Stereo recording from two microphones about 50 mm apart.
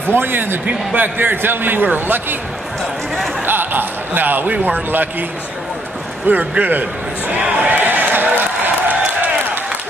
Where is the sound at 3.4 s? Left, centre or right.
Right.